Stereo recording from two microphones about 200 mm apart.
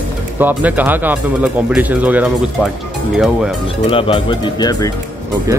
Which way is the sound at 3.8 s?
25° left (ahead or behind).